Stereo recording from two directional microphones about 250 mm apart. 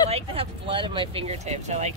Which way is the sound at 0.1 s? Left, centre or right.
Right.